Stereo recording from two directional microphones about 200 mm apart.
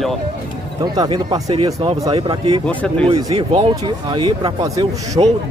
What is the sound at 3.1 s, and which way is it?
Speech, 25° right (ahead or behind).